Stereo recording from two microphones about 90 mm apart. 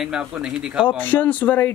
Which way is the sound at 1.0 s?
20° left (ahead or behind).